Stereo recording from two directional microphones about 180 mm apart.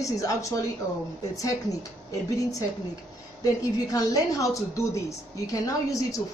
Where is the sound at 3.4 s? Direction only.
20° left (ahead or behind).